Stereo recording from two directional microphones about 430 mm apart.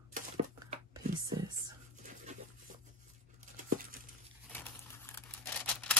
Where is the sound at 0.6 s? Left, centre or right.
Centre.